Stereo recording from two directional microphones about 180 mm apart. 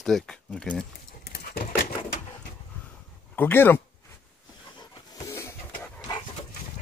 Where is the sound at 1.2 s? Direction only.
60° left (ahead or behind).